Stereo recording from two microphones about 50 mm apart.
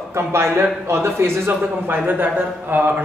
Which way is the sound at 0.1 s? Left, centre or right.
Right.